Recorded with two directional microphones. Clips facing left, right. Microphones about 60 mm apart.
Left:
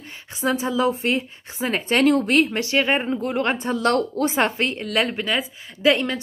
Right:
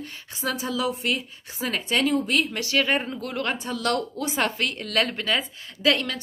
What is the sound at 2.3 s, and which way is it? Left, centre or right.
A woman's voice, left.